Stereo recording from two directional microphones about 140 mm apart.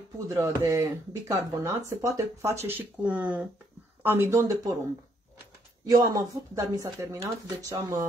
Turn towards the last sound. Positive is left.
turn(degrees=-25)  # may be behind; listen again after turning